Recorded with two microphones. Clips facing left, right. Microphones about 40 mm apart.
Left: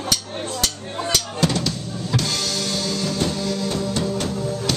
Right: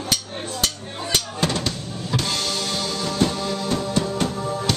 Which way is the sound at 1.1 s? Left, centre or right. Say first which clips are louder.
Even; right.